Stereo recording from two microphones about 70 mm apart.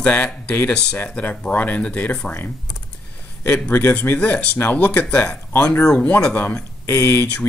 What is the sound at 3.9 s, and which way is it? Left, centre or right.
Speech, left.